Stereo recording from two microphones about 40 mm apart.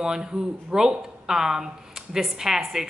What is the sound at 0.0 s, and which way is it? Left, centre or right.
Speech, centre.